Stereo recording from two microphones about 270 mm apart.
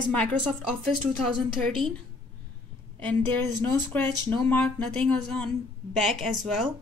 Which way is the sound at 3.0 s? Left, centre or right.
Centre.